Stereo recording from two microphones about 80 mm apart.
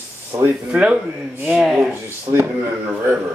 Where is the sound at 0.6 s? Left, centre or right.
Centre.